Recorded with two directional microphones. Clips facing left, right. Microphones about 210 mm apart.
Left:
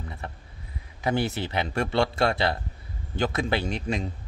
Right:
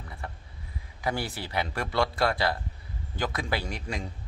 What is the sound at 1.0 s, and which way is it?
A man's voice, 25° left (ahead or behind).